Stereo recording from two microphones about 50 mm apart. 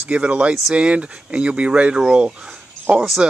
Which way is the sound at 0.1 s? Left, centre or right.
Right.